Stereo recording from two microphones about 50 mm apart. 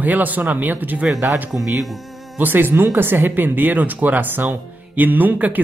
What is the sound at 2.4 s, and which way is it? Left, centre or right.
Speech, right.